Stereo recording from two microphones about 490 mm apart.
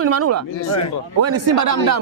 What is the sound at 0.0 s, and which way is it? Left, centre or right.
Speech, right.